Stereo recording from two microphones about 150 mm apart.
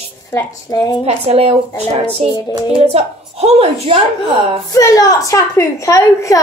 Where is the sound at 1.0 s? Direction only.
45° right (ahead or behind).